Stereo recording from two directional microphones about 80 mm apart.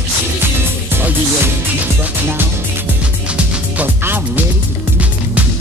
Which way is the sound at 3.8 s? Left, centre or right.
Right.